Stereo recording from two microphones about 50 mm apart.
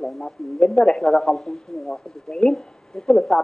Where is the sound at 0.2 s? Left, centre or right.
Centre.